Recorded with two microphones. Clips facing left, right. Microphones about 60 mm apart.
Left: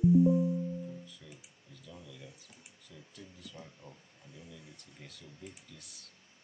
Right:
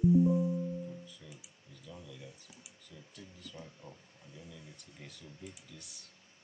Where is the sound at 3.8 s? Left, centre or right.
Right.